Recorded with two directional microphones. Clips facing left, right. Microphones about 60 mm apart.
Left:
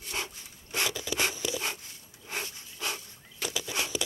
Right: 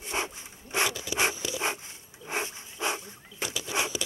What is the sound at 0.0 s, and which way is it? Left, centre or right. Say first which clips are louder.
Rub: right 4 dB; right.